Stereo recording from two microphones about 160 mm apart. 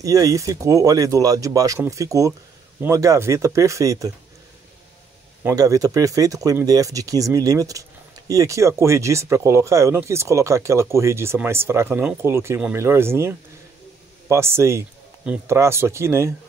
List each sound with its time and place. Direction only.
0.0 s speech: 20° right (ahead or behind)
5.6 s speech: 20° right (ahead or behind)